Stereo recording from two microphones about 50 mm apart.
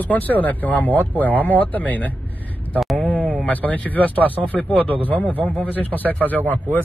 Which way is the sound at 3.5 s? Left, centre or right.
Left.